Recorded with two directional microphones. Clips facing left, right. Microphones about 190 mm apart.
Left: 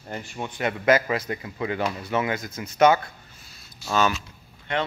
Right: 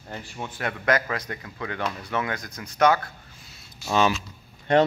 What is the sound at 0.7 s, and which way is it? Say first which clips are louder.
A man's voice: left 4 dB; 5° left (ahead or behind).